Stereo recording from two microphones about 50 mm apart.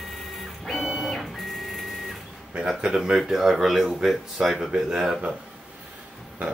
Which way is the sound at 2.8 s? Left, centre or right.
Centre.